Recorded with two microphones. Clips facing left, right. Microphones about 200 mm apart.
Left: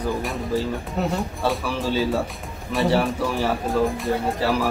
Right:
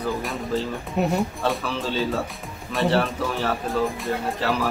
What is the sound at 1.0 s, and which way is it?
Speech, 15° right (ahead or behind).